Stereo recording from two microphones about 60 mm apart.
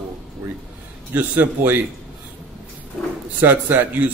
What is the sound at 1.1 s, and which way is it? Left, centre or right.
Speech, right.